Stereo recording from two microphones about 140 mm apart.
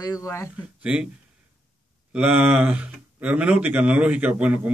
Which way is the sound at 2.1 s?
10° right (ahead or behind).